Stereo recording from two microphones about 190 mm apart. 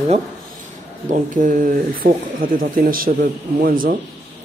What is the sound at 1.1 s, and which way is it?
Speech, 45° right (ahead or behind).